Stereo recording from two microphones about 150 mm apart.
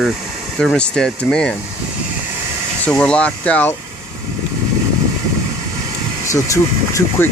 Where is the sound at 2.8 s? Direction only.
5° left (ahead or behind).